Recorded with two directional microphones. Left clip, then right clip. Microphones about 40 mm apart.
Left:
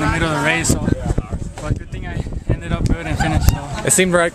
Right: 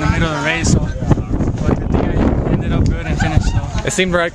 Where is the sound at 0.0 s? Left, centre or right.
Centre.